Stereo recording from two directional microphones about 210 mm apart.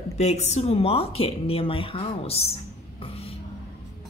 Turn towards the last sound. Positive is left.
turn(degrees=25)  # may be behind; listen again after turning